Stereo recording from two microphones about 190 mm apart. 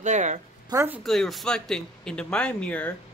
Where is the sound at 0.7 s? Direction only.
10° right (ahead or behind).